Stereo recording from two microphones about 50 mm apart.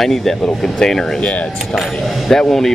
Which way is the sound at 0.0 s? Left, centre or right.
Centre.